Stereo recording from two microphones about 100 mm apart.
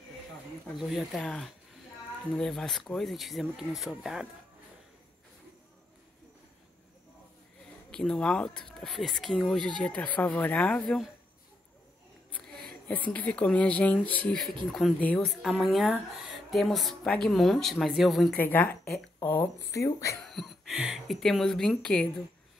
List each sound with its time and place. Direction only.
0.7 s speech: centre (ahead or behind)
7.9 s speech: 10° left (ahead or behind)
12.8 s speech: 15° left (ahead or behind)
15.1 s speech: centre (ahead or behind)
18.3 s speech: 20° left (ahead or behind)
20.2 s speech: centre (ahead or behind)